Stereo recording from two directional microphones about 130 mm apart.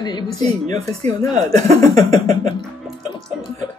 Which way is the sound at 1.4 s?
60° right (ahead or behind).